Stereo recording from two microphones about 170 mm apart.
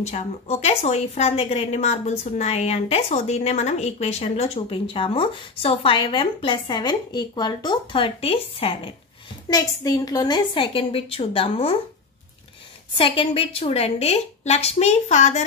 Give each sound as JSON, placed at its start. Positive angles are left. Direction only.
{"t": 0.0, "sound": "a woman's voice", "side_deg": 40}
{"t": 9.5, "sound": "a woman's voice", "side_deg": 20}
{"t": 12.9, "sound": "a woman's voice", "side_deg": 30}